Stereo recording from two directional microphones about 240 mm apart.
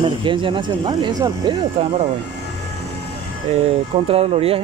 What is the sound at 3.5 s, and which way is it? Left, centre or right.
Speech, right.